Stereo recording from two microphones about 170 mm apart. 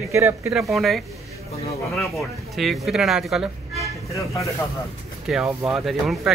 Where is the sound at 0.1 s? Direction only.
15° right (ahead or behind).